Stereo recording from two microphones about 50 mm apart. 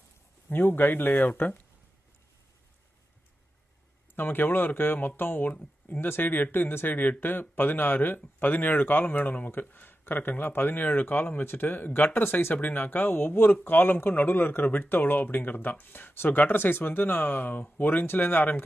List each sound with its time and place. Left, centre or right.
0.5 s speech: left
4.1 s speech: left
5.5 s speech: left
5.9 s speech: left
12.5 s speech: left